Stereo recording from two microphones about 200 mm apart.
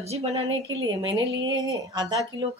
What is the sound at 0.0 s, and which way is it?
Speech, 30° right (ahead or behind).